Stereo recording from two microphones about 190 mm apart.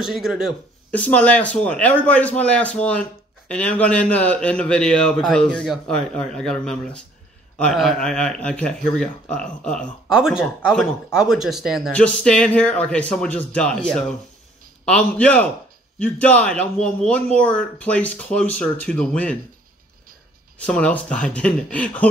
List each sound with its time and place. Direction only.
0.0 s speech: centre (ahead or behind)
20.5 s speech: 5° left (ahead or behind)